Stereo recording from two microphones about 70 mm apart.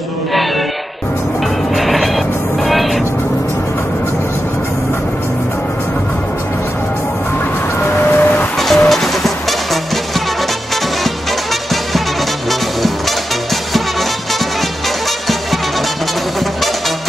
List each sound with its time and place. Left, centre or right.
1.8 s music: centre
7.8 s vehicle: left
8.5 s music: centre